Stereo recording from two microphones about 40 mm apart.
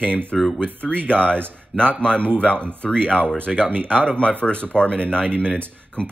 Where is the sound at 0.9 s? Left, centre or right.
Left.